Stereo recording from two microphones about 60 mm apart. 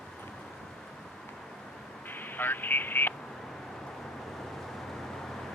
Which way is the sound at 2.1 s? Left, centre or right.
Left.